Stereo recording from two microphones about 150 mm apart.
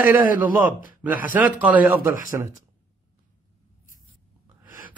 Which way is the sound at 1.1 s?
65° left (ahead or behind).